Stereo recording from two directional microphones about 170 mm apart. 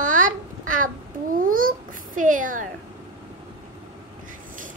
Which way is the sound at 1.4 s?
55° right (ahead or behind).